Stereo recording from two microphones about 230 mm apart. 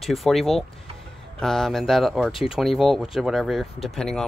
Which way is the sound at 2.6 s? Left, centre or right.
Centre.